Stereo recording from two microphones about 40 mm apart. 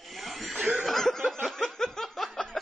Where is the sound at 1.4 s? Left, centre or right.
Centre.